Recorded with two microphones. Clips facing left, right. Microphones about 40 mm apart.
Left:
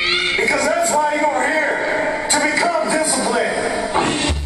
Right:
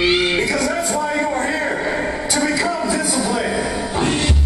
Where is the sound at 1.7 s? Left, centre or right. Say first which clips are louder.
Left 2 dB; centre.